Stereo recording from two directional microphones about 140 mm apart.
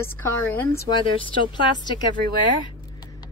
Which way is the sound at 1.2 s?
35° left (ahead or behind).